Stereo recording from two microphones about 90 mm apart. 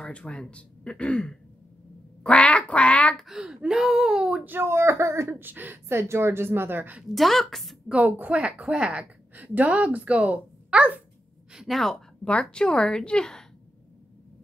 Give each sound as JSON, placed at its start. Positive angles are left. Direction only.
{"t": 0.0, "sound": "a woman's voice", "side_deg": 10}
{"t": 2.2, "sound": "quack", "side_deg": 15}
{"t": 3.3, "sound": "a sound", "side_deg": -5}
{"t": 4.5, "sound": "speech", "side_deg": -25}
{"t": 7.0, "sound": "a woman's voice", "side_deg": 0}
{"t": 7.9, "sound": "speech", "side_deg": -15}
{"t": 11.5, "sound": "a woman's voice", "side_deg": 0}